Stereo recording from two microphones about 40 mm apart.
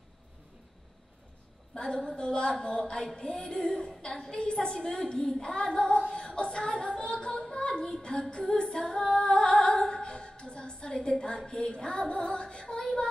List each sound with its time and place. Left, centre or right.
1.8 s a woman's voice: left
6.0 s music: centre
6.3 s a sound: left
7.4 s female singing: left